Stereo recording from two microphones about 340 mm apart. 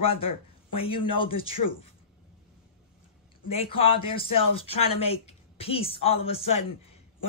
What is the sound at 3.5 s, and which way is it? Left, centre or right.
Speech, centre.